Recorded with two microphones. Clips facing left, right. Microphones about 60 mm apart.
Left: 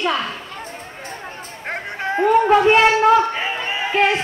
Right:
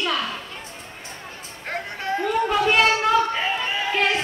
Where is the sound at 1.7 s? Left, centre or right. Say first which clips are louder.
Left 3 dB; left.